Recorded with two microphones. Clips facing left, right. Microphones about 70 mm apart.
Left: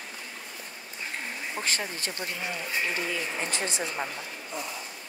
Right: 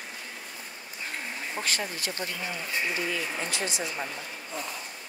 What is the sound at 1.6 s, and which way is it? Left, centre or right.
Speech, left.